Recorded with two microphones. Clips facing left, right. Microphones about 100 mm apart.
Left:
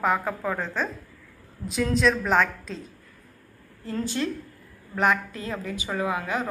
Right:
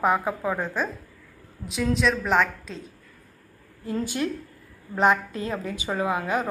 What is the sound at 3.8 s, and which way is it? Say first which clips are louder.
A woman's voice: right 1 dB; 15° right (ahead or behind).